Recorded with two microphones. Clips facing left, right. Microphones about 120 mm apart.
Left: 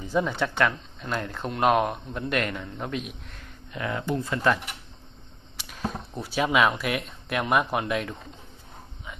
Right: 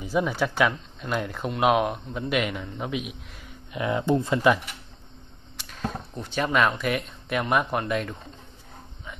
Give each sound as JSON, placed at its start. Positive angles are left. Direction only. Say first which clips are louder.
{"t": 0.0, "sound": "speech", "louder": "right 1 dB", "side_deg": -5}
{"t": 3.7, "sound": "speech", "louder": "right 5 dB", "side_deg": -20}
{"t": 5.6, "sound": "speech", "louder": "even", "side_deg": 5}